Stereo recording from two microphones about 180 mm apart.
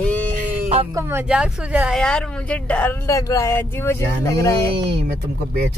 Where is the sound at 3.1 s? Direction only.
20° left (ahead or behind).